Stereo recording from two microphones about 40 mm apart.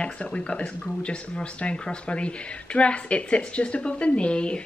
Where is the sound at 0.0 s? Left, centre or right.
Left.